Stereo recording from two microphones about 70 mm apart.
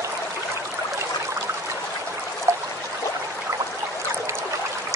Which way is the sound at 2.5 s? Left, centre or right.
Right.